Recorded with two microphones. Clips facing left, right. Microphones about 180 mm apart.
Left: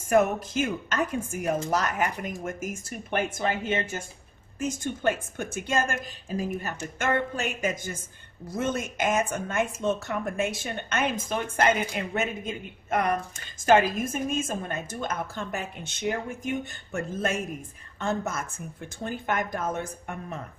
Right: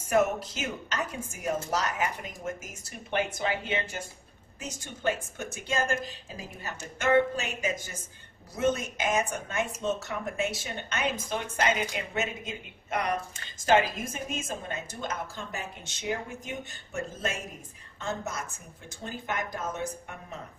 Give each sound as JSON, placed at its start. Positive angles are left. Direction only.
{"t": 0.1, "sound": "speech", "side_deg": 50}